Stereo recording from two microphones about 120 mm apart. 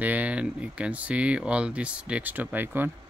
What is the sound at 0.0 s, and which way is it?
Speech, 10° right (ahead or behind).